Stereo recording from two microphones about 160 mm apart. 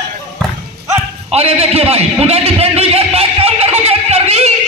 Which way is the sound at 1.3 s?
40° right (ahead or behind).